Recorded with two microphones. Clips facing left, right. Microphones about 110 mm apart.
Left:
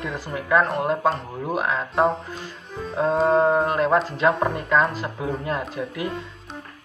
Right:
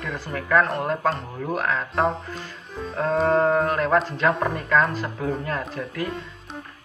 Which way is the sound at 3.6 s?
25° left (ahead or behind).